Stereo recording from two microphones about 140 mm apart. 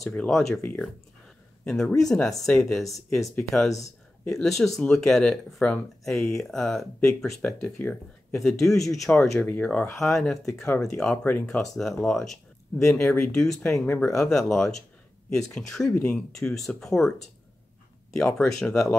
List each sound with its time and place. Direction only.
0.0 s speech: 5° left (ahead or behind)
0.6 s speech: 15° left (ahead or behind)
13.7 s speech: 15° left (ahead or behind)
14.1 s speech: 5° left (ahead or behind)
18.1 s speech: 5° left (ahead or behind)